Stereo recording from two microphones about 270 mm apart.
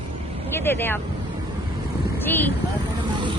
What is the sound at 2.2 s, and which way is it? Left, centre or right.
Speech, centre.